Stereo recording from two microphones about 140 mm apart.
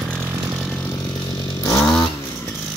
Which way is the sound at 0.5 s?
5° left (ahead or behind).